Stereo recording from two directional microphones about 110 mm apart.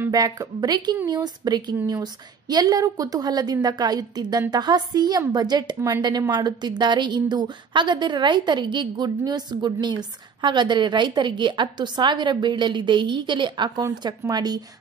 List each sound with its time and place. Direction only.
0.1 s a woman's voice: 35° right (ahead or behind)